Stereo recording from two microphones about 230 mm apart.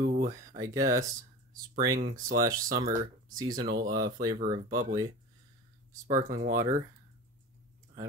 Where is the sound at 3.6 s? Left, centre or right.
Right.